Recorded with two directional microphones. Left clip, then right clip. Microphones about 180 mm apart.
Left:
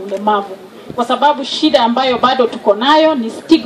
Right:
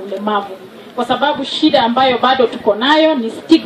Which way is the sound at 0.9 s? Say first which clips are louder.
Left 3 dB; 45° left (ahead or behind).